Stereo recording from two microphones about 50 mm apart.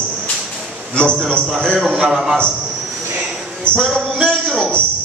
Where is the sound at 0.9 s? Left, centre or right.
Left.